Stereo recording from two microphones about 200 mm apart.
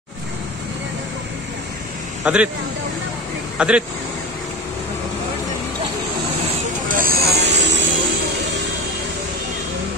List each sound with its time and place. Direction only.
2.2 s speech: 5° right (ahead or behind)
3.5 s speech: 5° right (ahead or behind)
6.9 s vehicle: 45° right (ahead or behind); by 7.9 s 65° right (ahead or behind)